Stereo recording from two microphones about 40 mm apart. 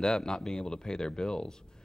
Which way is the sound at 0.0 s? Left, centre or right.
Centre.